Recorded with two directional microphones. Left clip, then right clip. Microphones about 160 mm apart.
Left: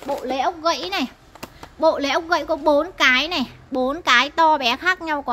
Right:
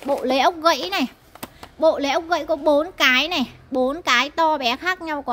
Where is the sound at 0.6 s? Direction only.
45° right (ahead or behind).